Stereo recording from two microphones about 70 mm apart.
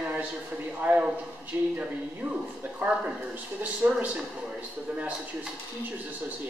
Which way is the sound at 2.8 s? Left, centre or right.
Centre.